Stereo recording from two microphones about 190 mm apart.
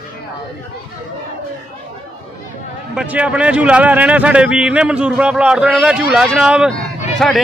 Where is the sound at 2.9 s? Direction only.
5° right (ahead or behind).